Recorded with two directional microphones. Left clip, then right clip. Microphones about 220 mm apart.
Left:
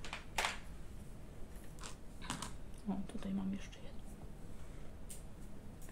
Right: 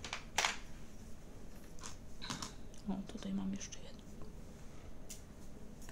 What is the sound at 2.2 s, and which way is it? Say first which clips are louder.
Typing: right 1 dB; centre (ahead or behind).